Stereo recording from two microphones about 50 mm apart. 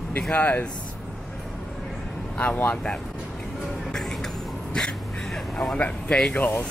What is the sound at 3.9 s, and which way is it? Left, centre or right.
Music, centre.